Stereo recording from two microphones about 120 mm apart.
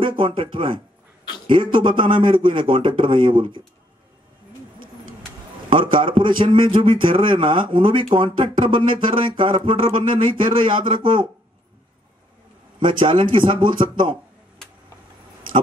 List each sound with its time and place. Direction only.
0.0 s a man's voice: 45° right (ahead or behind)
5.7 s a man's voice: 45° right (ahead or behind)
12.8 s a man's voice: 45° right (ahead or behind)